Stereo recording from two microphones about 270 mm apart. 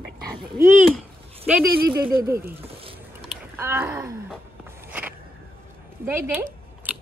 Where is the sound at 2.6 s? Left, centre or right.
Right.